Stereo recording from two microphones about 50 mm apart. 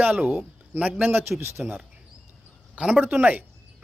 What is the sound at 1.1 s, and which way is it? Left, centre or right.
Speech, right.